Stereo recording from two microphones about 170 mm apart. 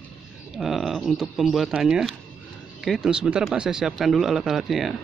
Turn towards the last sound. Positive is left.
turn(degrees=0)  # may be behind; listen again after turning